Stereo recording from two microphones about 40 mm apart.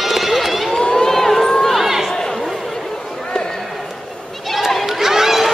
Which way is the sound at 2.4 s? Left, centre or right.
Centre.